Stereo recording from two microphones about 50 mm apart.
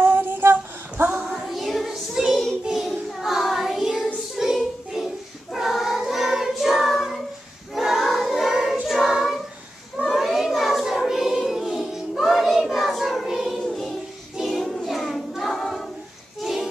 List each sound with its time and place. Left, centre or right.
0.0 s female singing: right
1.5 s child singing: centre
7.7 s choir: centre
10.0 s child singing: centre
14.4 s choir: centre
16.4 s a sound: centre